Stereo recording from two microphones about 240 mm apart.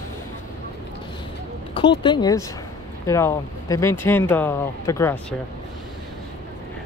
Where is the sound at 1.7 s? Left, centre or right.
Centre.